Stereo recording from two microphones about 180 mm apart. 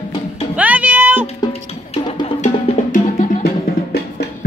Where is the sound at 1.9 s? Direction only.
35° left (ahead or behind).